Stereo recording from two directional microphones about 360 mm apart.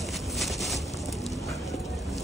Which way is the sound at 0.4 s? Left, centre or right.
Centre.